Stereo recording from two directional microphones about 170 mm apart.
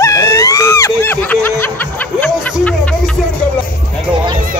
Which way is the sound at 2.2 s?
5° left (ahead or behind).